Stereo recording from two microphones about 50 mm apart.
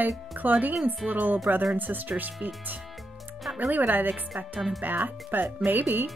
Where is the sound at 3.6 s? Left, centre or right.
Right.